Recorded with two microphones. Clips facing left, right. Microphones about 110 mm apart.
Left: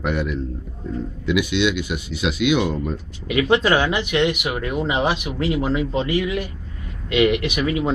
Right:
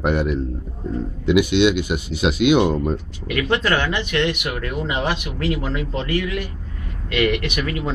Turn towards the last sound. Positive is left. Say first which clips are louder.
# left 3 dB
turn(degrees=15)  # may be behind; listen again after turning